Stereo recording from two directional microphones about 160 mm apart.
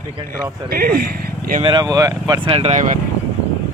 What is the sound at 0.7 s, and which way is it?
Speech, 70° right (ahead or behind).